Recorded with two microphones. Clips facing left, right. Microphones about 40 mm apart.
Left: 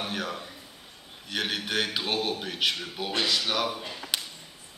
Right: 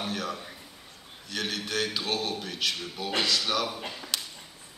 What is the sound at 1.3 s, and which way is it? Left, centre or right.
A man's voice, centre.